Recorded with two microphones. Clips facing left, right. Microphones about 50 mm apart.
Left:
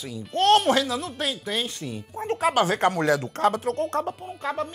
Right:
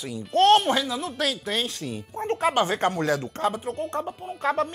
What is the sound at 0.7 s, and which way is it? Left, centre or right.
Speech, centre.